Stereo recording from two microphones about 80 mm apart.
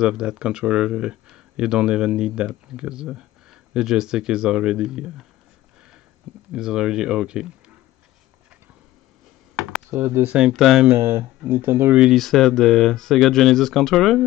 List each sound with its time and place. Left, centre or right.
0.0 s speech: centre
6.5 s speech: centre
9.6 s computer keyboard: centre
9.8 s speech: right
10.5 s speech: centre
10.9 s speech: right
12.0 s speech: centre